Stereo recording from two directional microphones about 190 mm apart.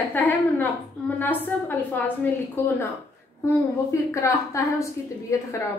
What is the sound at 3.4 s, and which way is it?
A woman's voice, 15° left (ahead or behind).